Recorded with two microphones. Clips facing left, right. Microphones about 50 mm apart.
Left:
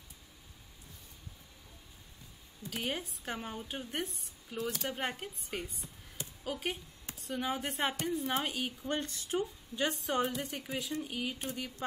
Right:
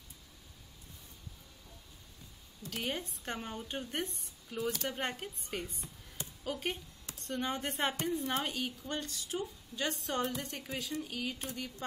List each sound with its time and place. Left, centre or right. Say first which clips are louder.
2.7 s a woman's voice: left 1 dB; centre
8.8 s speech: left 3 dB; left
9.4 s a woman's voice: left 3 dB; centre
10.7 s a woman's voice: even; left